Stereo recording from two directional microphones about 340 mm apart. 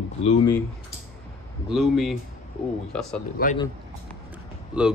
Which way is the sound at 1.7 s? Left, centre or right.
Centre.